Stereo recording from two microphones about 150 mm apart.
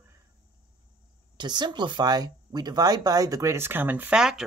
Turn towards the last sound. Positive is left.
turn(degrees=-5)  # may be behind; listen again after turning